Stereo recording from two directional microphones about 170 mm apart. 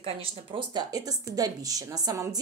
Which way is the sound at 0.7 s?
20° right (ahead or behind).